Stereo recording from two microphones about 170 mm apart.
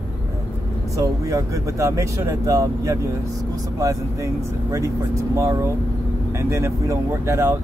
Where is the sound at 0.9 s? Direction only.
20° right (ahead or behind).